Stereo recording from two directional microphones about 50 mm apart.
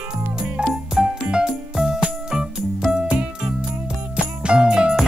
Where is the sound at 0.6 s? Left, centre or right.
Centre.